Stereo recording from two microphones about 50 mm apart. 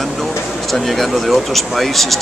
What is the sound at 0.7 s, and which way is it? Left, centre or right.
Speech, centre.